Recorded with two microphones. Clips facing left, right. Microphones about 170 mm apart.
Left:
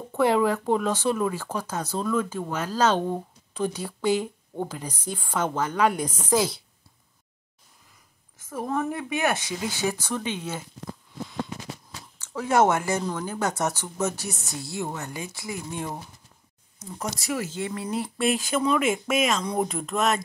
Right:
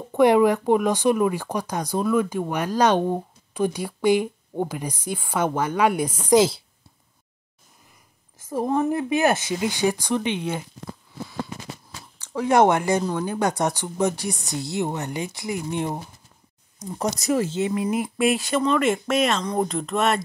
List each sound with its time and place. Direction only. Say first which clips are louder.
0.1 s speech: right 5 dB; 15° right (ahead or behind)
8.5 s a woman's voice: right 6 dB; 30° right (ahead or behind)
9.6 s speech: right 5 dB; 15° right (ahead or behind)
12.2 s speech: right 3 dB; 15° right (ahead or behind)
17.0 s a woman's voice: right 7 dB; 40° right (ahead or behind)
17.6 s speech: right 6 dB; 15° right (ahead or behind); by 20.2 s centre (ahead or behind)